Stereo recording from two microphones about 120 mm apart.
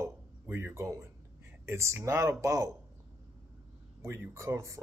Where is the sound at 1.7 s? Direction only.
20° right (ahead or behind).